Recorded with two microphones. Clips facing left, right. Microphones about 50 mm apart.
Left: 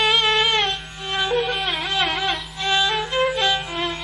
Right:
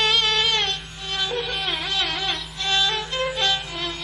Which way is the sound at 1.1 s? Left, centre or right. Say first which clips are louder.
Left 5 dB; left.